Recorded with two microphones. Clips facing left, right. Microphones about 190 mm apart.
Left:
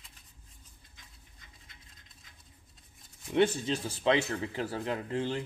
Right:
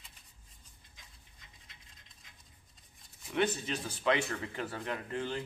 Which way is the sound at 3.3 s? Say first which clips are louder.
Left 5 dB; 30° left (ahead or behind).